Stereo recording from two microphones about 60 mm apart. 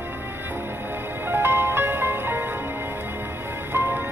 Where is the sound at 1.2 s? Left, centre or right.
Right.